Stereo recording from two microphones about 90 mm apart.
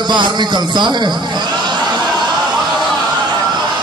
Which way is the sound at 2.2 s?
Centre (ahead or behind).